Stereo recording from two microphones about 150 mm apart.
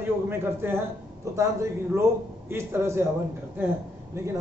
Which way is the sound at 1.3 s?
20° right (ahead or behind).